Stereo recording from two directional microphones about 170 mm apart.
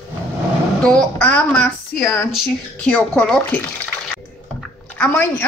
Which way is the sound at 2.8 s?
5° left (ahead or behind).